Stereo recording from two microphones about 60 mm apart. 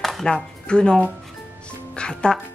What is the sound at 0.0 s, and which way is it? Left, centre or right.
Speech, centre.